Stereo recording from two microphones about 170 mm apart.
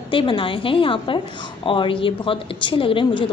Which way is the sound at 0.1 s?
30° left (ahead or behind).